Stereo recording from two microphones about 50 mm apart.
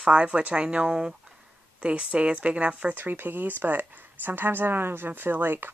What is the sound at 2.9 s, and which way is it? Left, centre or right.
Speech, right.